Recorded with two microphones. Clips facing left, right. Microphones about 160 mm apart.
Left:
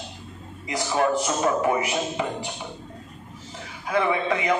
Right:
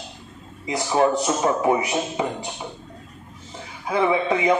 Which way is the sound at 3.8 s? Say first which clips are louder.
Right 3 dB; 25° right (ahead or behind).